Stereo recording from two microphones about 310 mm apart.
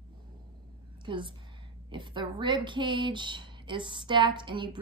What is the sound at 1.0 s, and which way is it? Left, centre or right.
A woman's voice, centre.